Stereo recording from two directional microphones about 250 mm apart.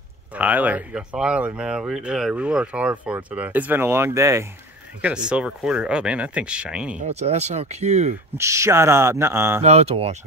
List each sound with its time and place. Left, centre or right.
0.3 s speech: centre
7.0 s speech: right
8.4 s speech: centre
9.6 s speech: right